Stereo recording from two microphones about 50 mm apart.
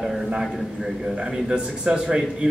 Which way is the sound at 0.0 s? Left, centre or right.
Centre.